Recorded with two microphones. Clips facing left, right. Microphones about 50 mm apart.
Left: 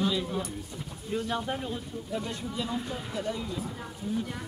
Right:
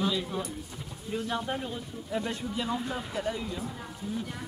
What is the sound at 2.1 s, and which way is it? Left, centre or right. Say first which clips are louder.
Speech: right 2 dB; centre.